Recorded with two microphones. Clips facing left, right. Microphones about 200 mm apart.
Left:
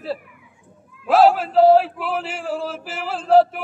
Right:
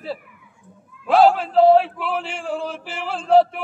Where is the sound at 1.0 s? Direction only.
5° left (ahead or behind).